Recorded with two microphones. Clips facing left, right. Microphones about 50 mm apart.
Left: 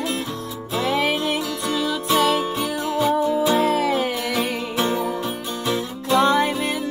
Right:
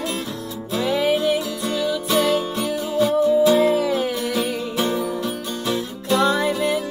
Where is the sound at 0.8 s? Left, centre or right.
Left.